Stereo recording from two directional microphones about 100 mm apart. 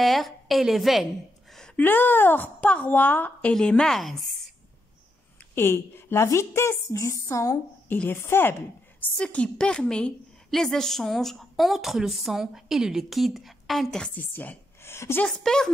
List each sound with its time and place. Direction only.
0.0 s a woman's voice: centre (ahead or behind)
1.8 s a woman's voice: 20° left (ahead or behind); by 4.4 s centre (ahead or behind)
5.5 s a woman's voice: 25° left (ahead or behind)
7.9 s a woman's voice: 20° left (ahead or behind)
9.1 s a woman's voice: 10° left (ahead or behind)
14.3 s speech: 20° left (ahead or behind)
15.2 s a woman's voice: 5° left (ahead or behind)